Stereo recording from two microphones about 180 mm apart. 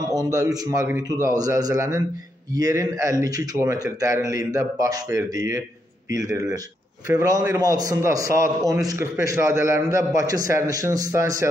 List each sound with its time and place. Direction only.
0.1 s a man's voice: 20° right (ahead or behind)